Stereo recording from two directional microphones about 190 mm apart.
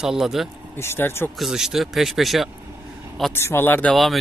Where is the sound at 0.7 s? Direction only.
10° left (ahead or behind).